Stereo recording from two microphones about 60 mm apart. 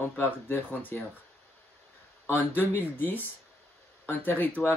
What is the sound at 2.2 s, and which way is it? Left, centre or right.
Speech, left.